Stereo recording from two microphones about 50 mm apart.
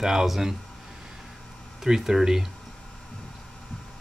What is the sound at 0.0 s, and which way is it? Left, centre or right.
Speech, centre.